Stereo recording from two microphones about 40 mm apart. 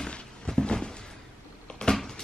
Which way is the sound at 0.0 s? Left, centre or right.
Centre.